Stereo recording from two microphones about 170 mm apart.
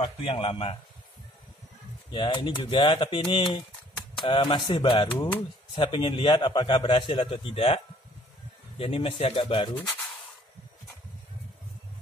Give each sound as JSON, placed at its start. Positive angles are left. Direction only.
{"t": 0.0, "sound": "speech", "side_deg": 30}
{"t": 2.1, "sound": "a man's voice", "side_deg": 25}